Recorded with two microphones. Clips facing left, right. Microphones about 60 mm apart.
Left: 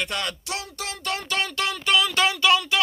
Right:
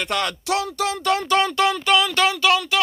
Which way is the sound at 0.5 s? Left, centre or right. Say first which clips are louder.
Right 10 dB; right.